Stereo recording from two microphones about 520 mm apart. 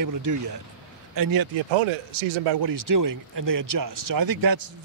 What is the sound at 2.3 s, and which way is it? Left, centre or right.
Speech, right.